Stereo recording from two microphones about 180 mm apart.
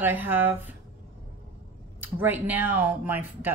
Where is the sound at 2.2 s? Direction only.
10° right (ahead or behind).